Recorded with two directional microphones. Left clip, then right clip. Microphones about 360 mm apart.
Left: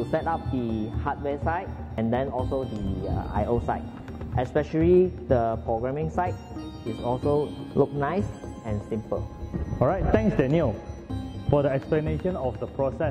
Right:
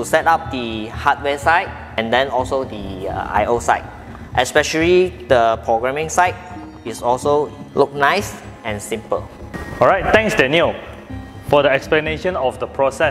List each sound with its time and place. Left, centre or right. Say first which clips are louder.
0.1 s speech: right 15 dB; centre
7.1 s speech: right 9 dB; centre
8.0 s speech: right 12 dB; centre